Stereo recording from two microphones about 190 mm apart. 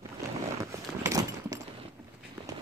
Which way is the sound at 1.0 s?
20° right (ahead or behind).